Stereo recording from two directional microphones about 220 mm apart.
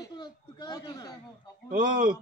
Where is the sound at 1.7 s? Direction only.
40° right (ahead or behind).